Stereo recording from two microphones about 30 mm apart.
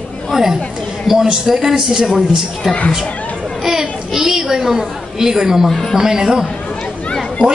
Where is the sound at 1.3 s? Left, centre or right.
Centre.